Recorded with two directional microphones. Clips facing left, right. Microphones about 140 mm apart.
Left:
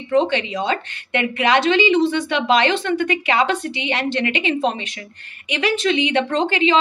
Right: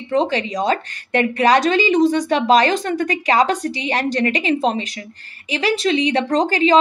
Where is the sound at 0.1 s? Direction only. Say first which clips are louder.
Left 1 dB; 35° right (ahead or behind).